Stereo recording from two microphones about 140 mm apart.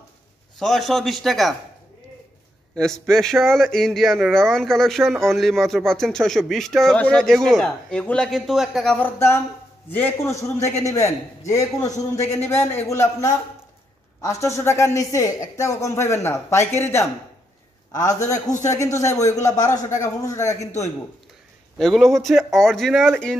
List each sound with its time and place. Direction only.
0.6 s a man's voice: centre (ahead or behind)
2.7 s a man's voice: 5° left (ahead or behind)
8.9 s speech: 15° left (ahead or behind)
21.7 s a man's voice: centre (ahead or behind)